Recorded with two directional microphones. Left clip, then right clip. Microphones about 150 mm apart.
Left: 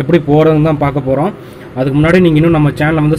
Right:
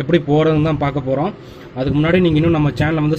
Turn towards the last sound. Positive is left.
turn(degrees=-5)  # may be behind; listen again after turning